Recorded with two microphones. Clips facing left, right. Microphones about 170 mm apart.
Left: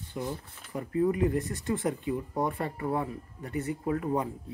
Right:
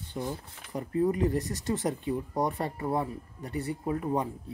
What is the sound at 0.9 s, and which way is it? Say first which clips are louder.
Speech: even; 35° right (ahead or behind).